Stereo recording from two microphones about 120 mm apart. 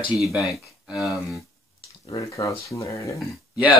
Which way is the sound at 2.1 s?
25° left (ahead or behind).